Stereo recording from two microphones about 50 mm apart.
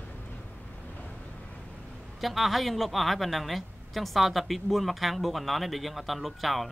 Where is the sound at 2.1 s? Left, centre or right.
Centre.